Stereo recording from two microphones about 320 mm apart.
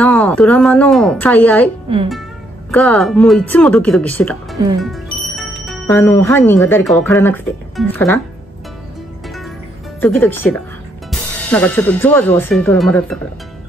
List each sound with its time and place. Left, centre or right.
0.0 s speech: centre
2.7 s speech: centre
9.9 s speech: centre